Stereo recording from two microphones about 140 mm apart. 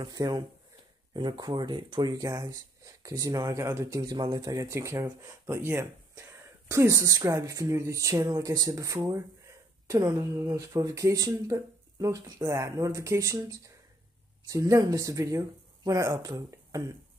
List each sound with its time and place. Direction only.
0.0 s speech: 30° right (ahead or behind)